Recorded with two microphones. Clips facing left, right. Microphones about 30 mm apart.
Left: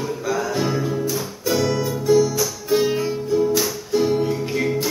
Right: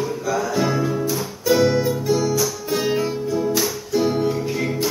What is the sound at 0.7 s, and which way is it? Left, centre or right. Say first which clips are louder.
Music: right 1 dB; centre.